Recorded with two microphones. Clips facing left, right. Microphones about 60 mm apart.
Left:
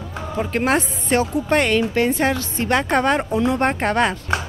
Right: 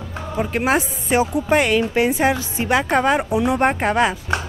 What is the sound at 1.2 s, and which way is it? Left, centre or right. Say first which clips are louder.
Speech: right 1 dB; centre.